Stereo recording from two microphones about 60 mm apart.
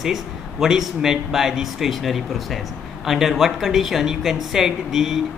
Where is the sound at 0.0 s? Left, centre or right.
Centre.